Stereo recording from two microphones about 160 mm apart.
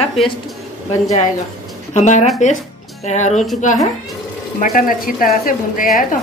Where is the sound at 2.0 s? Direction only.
50° left (ahead or behind).